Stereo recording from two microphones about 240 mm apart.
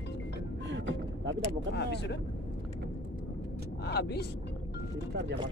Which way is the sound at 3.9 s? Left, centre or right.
Left.